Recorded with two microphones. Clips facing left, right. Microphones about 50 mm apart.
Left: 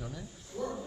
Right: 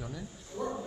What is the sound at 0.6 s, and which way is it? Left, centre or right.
Speech, centre.